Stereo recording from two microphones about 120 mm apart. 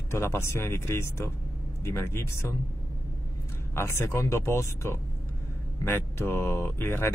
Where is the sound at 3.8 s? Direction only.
20° left (ahead or behind).